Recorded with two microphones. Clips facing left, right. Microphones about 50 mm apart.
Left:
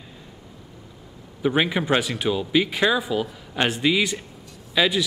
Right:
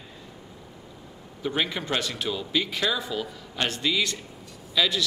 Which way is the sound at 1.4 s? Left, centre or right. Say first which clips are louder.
Left 6 dB; left.